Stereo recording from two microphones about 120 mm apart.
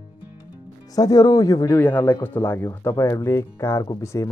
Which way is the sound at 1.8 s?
15° left (ahead or behind).